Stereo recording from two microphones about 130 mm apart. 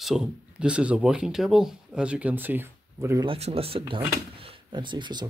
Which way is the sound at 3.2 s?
50° right (ahead or behind).